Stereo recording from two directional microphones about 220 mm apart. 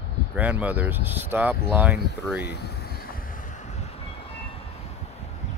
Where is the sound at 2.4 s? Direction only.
45° left (ahead or behind).